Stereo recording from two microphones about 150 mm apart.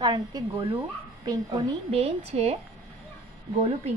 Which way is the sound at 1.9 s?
40° right (ahead or behind).